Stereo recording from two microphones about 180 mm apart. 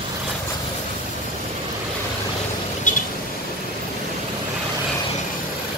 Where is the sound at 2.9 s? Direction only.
45° left (ahead or behind).